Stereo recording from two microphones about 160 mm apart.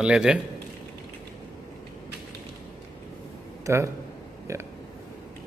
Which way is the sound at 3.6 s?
15° right (ahead or behind).